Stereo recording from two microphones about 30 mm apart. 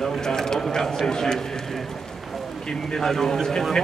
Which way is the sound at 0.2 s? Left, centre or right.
Centre.